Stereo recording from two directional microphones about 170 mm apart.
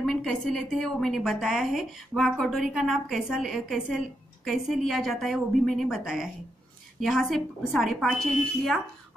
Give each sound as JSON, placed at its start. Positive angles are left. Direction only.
{"t": 0.0, "sound": "a woman's voice", "side_deg": 0}